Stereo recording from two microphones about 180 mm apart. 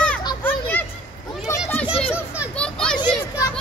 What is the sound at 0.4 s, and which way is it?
Children playing, 10° left (ahead or behind).